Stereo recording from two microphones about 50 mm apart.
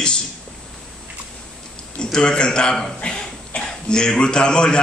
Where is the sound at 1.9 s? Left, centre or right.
Centre.